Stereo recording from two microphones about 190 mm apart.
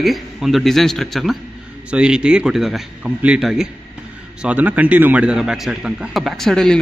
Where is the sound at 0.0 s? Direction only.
Centre (ahead or behind).